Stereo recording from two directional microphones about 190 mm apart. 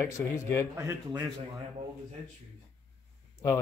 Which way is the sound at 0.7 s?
15° right (ahead or behind).